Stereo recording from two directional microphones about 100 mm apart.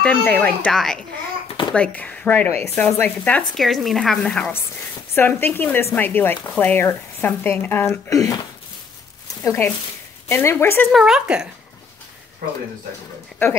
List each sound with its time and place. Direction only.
0.0 s speech: 15° left (ahead or behind)
3.5 s speech: centre (ahead or behind)
5.1 s speech: 20° left (ahead or behind)
8.1 s speech: 35° left (ahead or behind)
9.4 s speech: 30° left (ahead or behind)
10.9 s speech: 5° right (ahead or behind)
13.4 s speech: 25° left (ahead or behind)